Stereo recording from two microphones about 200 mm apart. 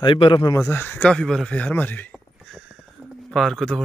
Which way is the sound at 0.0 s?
25° left (ahead or behind).